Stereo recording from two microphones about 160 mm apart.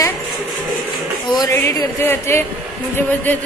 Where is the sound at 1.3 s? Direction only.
20° left (ahead or behind).